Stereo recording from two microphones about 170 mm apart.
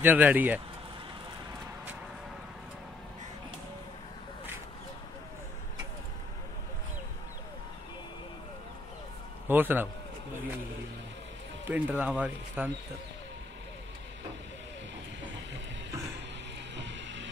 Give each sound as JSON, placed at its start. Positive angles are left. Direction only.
{"t": 0.0, "sound": "speech", "side_deg": -10}
{"t": 9.5, "sound": "speech", "side_deg": -10}
{"t": 11.6, "sound": "speech", "side_deg": -10}
{"t": 16.7, "sound": "music", "side_deg": -90}